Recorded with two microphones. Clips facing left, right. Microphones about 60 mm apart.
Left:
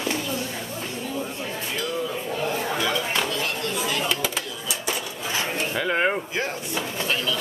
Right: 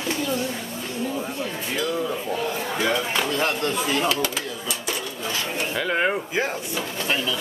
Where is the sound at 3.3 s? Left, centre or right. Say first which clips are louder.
Right 4 dB; right.